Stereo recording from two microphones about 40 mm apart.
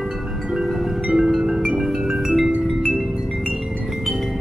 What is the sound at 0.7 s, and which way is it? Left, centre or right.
Music, centre.